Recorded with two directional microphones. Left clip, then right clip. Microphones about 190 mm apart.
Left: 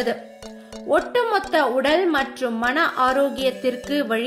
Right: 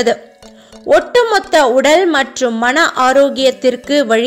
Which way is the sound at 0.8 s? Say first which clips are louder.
Right 10 dB; 40° right (ahead or behind).